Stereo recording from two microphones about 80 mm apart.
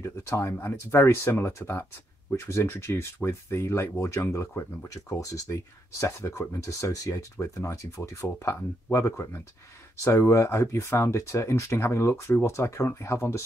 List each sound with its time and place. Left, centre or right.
0.0 s speech: left